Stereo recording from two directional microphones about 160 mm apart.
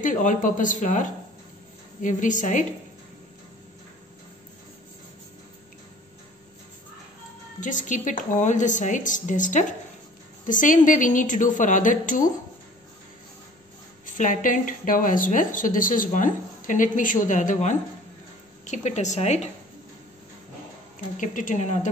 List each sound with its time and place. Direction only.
0.0 s a woman's voice: 55° left (ahead or behind)
7.6 s a woman's voice: 50° left (ahead or behind)
14.0 s a woman's voice: 55° left (ahead or behind)
21.2 s a woman's voice: 55° left (ahead or behind)